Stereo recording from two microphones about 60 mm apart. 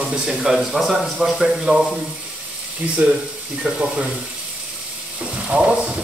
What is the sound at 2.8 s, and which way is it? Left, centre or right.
Speech, right.